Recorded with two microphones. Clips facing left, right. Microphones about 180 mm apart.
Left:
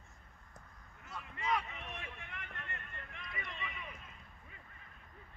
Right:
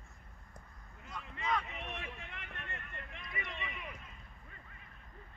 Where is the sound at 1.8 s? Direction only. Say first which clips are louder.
Right 3 dB; 20° right (ahead or behind).